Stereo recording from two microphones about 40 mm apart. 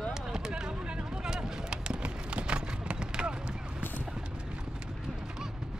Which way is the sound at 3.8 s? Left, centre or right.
Left.